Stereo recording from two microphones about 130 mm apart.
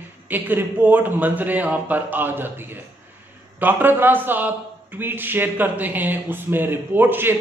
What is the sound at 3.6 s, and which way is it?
A man's voice, 15° right (ahead or behind).